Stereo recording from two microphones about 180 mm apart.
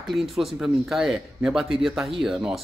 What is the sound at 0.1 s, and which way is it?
Speech, centre (ahead or behind).